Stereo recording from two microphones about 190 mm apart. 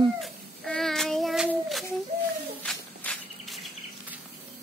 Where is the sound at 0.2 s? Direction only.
5° left (ahead or behind).